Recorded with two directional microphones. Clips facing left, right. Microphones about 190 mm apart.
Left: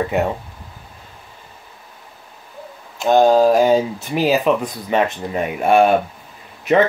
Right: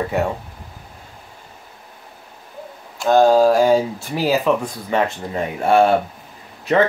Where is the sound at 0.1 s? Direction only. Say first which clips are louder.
Left 1 dB; 20° left (ahead or behind).